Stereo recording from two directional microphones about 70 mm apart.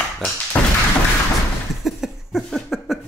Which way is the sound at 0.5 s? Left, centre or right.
Centre.